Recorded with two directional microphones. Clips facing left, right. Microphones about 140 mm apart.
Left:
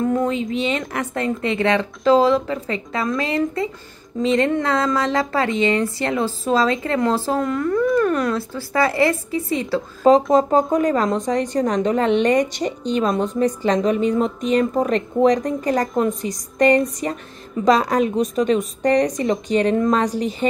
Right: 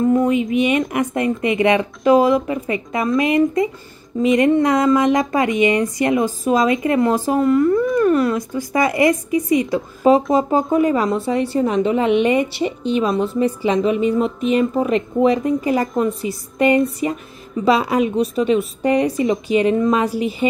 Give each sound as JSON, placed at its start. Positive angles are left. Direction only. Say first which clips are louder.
{"t": 0.0, "sound": "speech", "louder": "right 4 dB", "side_deg": -10}